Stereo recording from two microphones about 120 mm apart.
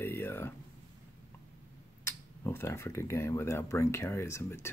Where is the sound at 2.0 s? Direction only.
20° left (ahead or behind).